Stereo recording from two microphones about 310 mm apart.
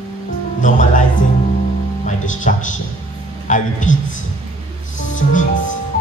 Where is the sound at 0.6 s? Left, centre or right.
Left.